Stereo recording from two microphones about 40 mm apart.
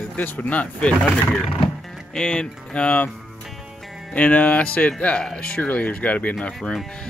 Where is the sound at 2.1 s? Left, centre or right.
Left.